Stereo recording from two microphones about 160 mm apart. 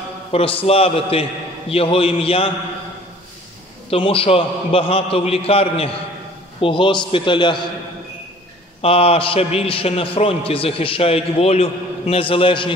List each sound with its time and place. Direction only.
0.3 s a man's voice: 35° left (ahead or behind)
3.9 s a man's voice: 35° left (ahead or behind)
8.8 s a man's voice: 40° left (ahead or behind)